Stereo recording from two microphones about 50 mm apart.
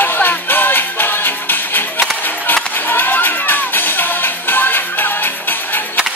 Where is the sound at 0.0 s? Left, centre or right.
Left.